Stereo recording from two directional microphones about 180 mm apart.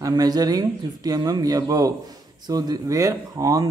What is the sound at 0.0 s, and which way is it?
Speech, 20° right (ahead or behind).